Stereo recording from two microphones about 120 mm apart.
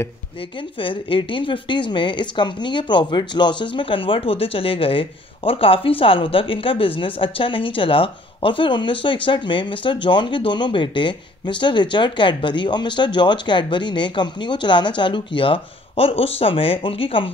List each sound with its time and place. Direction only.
0.7 s a woman's voice: 45° left (ahead or behind)